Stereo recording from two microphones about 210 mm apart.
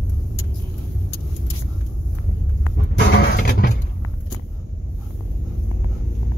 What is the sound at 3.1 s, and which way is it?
Music, 45° left (ahead or behind).